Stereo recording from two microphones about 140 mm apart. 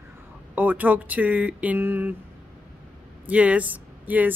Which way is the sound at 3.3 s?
10° right (ahead or behind).